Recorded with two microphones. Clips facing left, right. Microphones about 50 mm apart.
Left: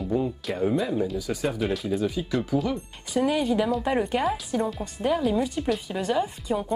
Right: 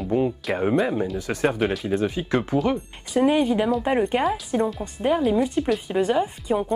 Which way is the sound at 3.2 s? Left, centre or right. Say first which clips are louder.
Right 4 dB; centre.